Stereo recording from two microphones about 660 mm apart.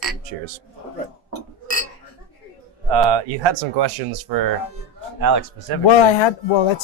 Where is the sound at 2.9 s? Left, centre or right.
Right.